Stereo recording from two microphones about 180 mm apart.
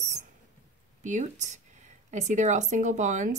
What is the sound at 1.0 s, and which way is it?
Speech, 45° right (ahead or behind).